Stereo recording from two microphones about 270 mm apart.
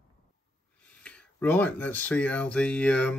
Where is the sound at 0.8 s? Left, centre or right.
Centre.